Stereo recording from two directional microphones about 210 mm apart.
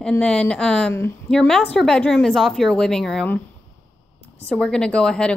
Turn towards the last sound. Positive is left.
turn(degrees=5)  # may be behind; listen again after turning